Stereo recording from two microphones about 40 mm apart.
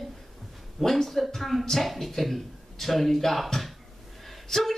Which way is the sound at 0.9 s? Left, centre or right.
Centre.